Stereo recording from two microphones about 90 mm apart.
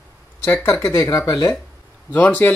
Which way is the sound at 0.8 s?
35° left (ahead or behind).